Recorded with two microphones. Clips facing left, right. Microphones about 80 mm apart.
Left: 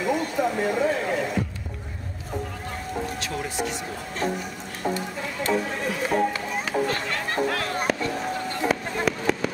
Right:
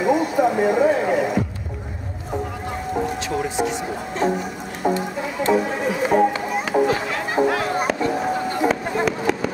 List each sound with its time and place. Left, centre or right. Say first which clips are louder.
0.0 s speech: right 6 dB; centre
3.3 s music: right 6 dB; centre
4.2 s speech: right 6 dB; centre
4.8 s chicken: right 6 dB; centre
5.5 s a sound: right 6 dB; centre
9.0 s a sound: right 3 dB; centre